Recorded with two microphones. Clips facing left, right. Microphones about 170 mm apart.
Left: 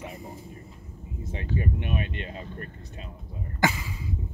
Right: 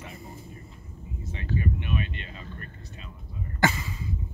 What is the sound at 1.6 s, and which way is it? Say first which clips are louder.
Speech: even; 50° left (ahead or behind).